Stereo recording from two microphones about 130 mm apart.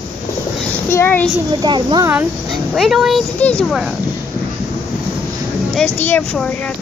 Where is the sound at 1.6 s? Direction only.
35° right (ahead or behind).